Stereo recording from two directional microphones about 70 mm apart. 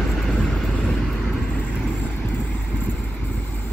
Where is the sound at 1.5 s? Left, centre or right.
Centre.